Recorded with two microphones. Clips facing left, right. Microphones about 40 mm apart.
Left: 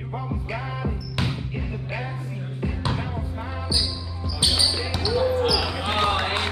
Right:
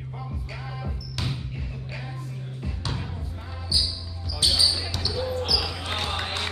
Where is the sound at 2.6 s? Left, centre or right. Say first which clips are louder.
Left 7 dB; left.